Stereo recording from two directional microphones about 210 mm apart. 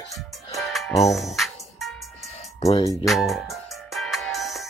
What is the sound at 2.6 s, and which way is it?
Speech, 30° left (ahead or behind).